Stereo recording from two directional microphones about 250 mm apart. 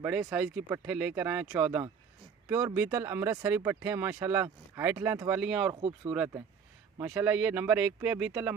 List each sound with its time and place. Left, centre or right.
0.0 s speech: centre
5.8 s speech: right
6.1 s speech: centre